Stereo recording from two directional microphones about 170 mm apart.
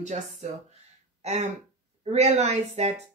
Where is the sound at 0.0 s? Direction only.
45° right (ahead or behind).